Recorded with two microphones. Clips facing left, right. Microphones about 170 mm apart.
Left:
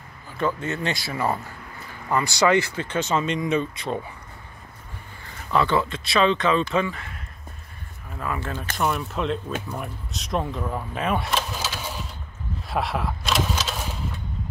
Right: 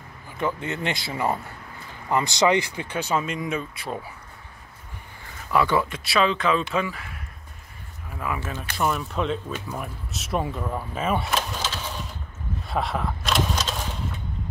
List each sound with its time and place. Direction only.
0.4 s speech: 15° right (ahead or behind)
5.5 s speech: 10° right (ahead or behind)
8.2 s speech: 10° right (ahead or behind)
8.7 s speech: centre (ahead or behind)